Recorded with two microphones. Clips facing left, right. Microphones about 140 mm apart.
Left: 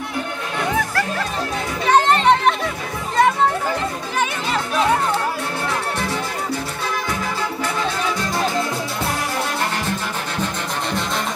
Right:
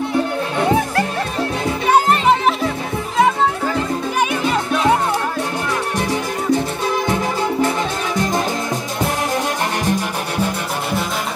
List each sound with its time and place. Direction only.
0.6 s music: 25° right (ahead or behind)
1.9 s music: 10° right (ahead or behind)
5.9 s music: 15° right (ahead or behind)
9.8 s music: 10° right (ahead or behind)